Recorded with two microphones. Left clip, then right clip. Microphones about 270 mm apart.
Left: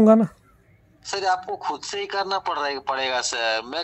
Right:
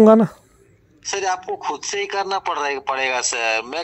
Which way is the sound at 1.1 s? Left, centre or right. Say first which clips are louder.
Right 1 dB; centre.